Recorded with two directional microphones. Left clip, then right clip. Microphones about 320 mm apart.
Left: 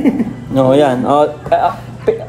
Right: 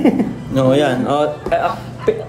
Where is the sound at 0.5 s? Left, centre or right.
Centre.